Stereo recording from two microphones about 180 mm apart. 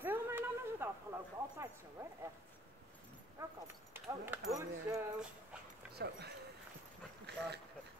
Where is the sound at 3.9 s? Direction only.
10° right (ahead or behind).